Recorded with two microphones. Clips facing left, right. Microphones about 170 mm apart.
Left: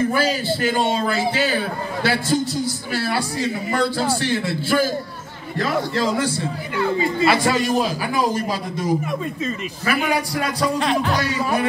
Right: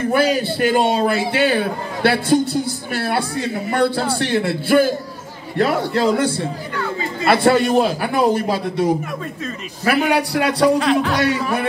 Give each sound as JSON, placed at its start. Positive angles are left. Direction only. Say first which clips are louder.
{"t": 0.1, "sound": "a man's voice", "louder": "right 4 dB", "side_deg": -60}
{"t": 10.8, "sound": "speech", "louder": "right 3 dB", "side_deg": 0}